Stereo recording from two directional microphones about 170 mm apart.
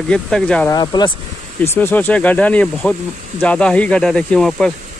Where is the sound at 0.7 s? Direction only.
25° left (ahead or behind).